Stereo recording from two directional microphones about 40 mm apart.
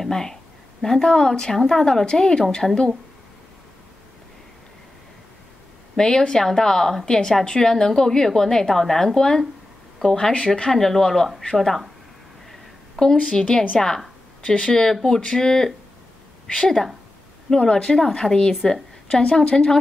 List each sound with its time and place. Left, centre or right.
0.0 s a woman's voice: centre
5.9 s a woman's voice: centre
10.3 s a woman's voice: left
13.1 s a woman's voice: left
13.7 s a sound: centre
14.7 s a woman's voice: centre